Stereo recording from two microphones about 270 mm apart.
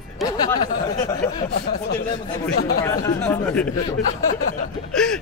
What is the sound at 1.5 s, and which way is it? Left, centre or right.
Speech, left.